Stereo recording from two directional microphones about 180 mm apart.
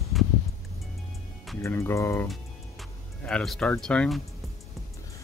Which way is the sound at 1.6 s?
15° left (ahead or behind).